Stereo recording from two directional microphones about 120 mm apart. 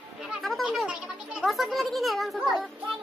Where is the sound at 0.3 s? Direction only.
Centre (ahead or behind).